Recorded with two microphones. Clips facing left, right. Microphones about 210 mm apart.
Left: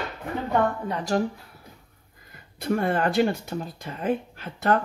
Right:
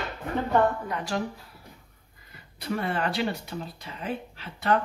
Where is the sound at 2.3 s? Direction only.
50° left (ahead or behind).